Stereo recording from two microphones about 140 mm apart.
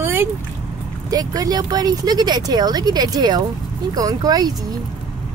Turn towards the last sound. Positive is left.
turn(degrees=-30)  # may be behind; listen again after turning